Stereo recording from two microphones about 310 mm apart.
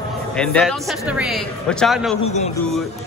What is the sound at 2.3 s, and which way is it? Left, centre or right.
Speech, left.